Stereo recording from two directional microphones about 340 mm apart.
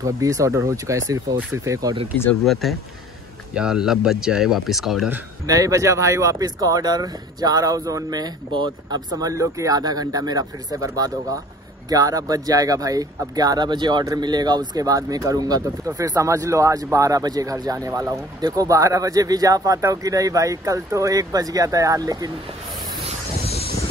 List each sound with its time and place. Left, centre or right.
0.0 s speech: centre
2.1 s speech: centre
23.4 s a sound: centre